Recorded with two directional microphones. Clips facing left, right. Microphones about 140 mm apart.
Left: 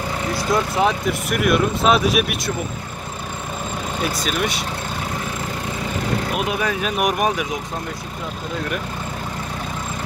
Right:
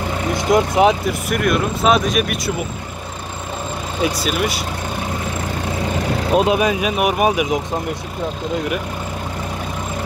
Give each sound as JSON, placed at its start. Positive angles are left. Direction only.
{"t": 0.3, "sound": "speech", "side_deg": -20}
{"t": 1.3, "sound": "speech", "side_deg": 0}
{"t": 4.0, "sound": "speech", "side_deg": -10}
{"t": 6.3, "sound": "speech", "side_deg": -25}
{"t": 7.0, "sound": "speech", "side_deg": -5}